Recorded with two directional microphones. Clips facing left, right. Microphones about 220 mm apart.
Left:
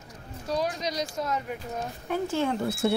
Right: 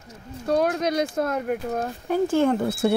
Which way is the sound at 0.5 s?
55° right (ahead or behind).